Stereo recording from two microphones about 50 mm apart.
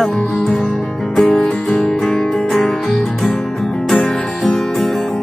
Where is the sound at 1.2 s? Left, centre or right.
Left.